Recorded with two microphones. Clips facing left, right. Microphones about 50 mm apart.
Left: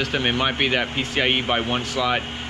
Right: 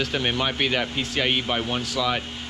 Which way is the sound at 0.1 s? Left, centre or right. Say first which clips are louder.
Left 3 dB; centre.